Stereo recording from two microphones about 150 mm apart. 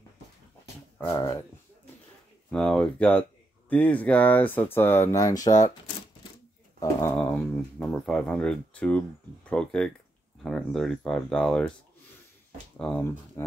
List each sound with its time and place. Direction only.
1.1 s speech: 20° left (ahead or behind)
2.5 s speech: 5° left (ahead or behind); by 5.7 s 25° left (ahead or behind)
6.8 s bird: 15° left (ahead or behind)
7.8 s speech: 5° left (ahead or behind)
12.7 s speech: 10° left (ahead or behind)